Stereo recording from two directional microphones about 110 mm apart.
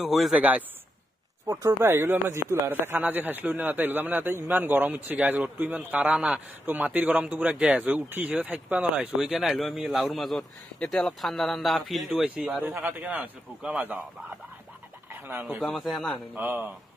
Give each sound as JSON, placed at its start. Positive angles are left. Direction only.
{"t": 0.0, "sound": "a man's voice", "side_deg": 0}
{"t": 0.4, "sound": "speech", "side_deg": -15}
{"t": 1.5, "sound": "a man's voice", "side_deg": -25}
{"t": 12.6, "sound": "speech", "side_deg": -15}
{"t": 15.6, "sound": "a man's voice", "side_deg": 5}
{"t": 16.3, "sound": "speech", "side_deg": -15}